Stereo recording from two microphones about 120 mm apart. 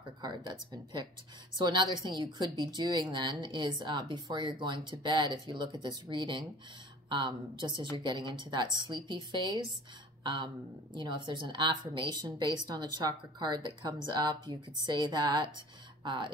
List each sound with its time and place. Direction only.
0.2 s a woman's voice: 40° right (ahead or behind)